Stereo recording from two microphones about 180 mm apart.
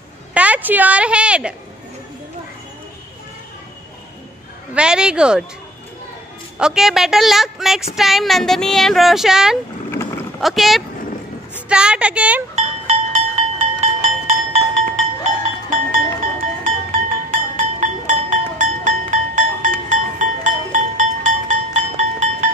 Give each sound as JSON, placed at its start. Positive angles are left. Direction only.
{"t": 0.3, "sound": "a woman's voice", "side_deg": -5}
{"t": 4.7, "sound": "speech", "side_deg": -5}
{"t": 6.6, "sound": "speech", "side_deg": 0}
{"t": 9.8, "sound": "sheep", "side_deg": 15}
{"t": 10.4, "sound": "a woman's voice", "side_deg": 0}
{"t": 12.5, "sound": "music", "side_deg": -35}
{"t": 16.6, "sound": "music", "side_deg": -45}